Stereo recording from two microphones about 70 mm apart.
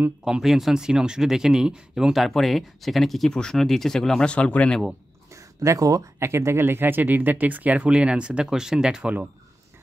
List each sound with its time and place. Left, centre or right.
0.2 s speech: centre
2.2 s speech: centre
5.3 s a sound: right
6.1 s speech: right; by 9.1 s centre